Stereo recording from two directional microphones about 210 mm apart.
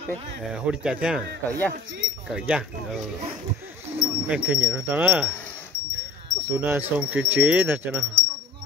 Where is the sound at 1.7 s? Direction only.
60° right (ahead or behind).